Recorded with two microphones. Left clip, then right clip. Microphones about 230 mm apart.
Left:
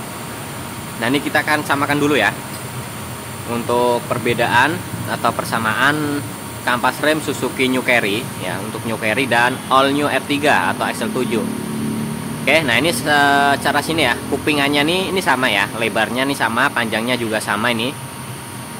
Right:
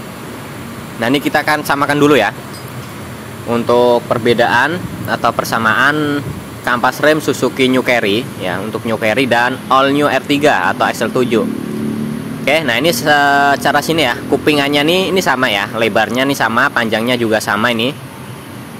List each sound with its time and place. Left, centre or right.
1.0 s speech: centre
3.5 s speech: centre
12.4 s speech: centre